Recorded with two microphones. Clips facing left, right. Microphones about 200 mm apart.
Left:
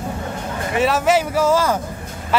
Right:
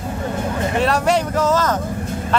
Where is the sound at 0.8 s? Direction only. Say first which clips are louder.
Left 2 dB; 5° left (ahead or behind).